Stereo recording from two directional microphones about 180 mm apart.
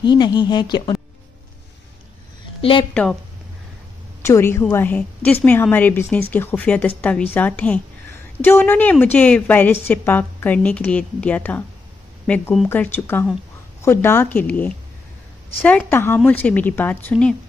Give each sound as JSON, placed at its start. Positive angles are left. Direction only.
{"t": 0.0, "sound": "speech", "side_deg": 25}
{"t": 2.6, "sound": "speech", "side_deg": 30}
{"t": 2.9, "sound": "a woman's voice", "side_deg": 5}
{"t": 4.2, "sound": "a woman's voice", "side_deg": 15}